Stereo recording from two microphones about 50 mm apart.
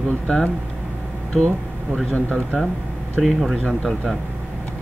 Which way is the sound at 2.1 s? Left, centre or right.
Left.